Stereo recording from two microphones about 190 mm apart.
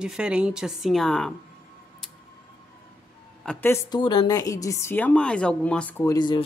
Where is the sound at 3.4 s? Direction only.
5° left (ahead or behind).